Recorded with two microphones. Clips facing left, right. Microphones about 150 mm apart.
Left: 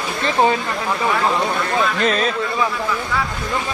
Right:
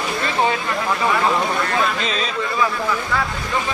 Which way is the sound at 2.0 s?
55° left (ahead or behind).